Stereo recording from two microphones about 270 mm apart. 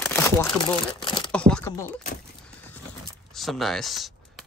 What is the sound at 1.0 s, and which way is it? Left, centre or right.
Crumpling, centre.